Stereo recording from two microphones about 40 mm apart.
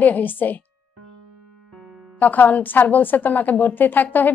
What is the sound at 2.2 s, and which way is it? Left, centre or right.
A woman's voice, left.